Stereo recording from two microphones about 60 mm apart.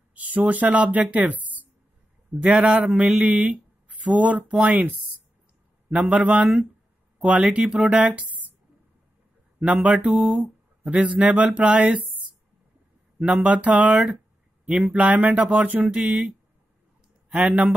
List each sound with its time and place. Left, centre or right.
0.1 s speech: right
2.5 s speech: centre
7.9 s speech: right
9.7 s speech: right
13.2 s speech: right
17.3 s speech: centre